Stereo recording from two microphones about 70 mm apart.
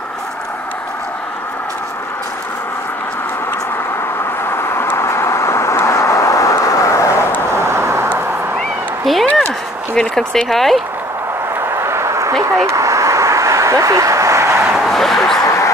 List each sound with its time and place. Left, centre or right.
4.5 s vehicle: left
7.6 s vehicle: right
8.5 s cat: centre
9.9 s speech: centre
11.8 s a sound: right
12.6 s vehicle: right
14.8 s speech: centre
15.4 s a sound: left